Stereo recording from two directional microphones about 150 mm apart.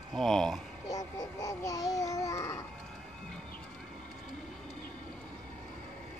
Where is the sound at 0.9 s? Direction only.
25° left (ahead or behind).